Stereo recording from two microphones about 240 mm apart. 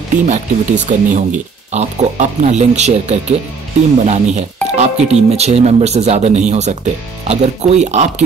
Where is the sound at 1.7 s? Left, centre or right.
Right.